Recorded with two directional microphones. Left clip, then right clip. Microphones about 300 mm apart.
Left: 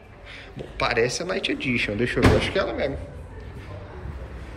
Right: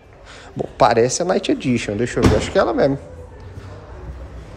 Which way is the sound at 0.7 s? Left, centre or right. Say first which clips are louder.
Right 8 dB; centre.